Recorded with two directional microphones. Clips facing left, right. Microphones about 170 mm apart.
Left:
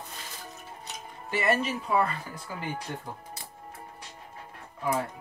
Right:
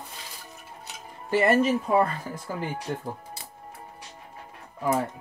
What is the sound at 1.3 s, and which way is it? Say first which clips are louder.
Speech: right 6 dB; 50° right (ahead or behind).